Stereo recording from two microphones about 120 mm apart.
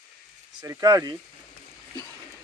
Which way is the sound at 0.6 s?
30° right (ahead or behind).